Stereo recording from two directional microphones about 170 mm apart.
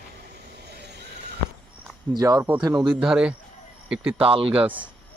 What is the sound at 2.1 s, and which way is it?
Speech, 20° right (ahead or behind).